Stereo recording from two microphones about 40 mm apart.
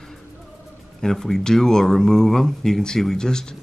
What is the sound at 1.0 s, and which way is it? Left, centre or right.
Speech, centre.